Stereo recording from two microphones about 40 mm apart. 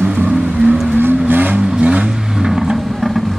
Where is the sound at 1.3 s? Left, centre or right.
Right.